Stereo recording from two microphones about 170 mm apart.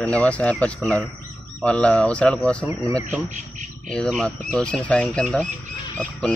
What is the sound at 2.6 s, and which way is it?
Speech, 20° right (ahead or behind).